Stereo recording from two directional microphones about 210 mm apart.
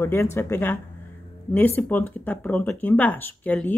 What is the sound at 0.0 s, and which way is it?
Speech, 10° left (ahead or behind).